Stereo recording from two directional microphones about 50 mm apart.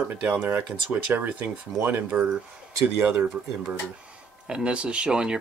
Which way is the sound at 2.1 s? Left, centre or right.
Centre.